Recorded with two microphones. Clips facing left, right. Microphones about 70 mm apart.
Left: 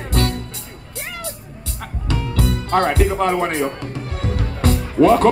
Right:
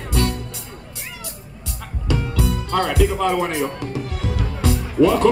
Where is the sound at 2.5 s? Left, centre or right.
Left.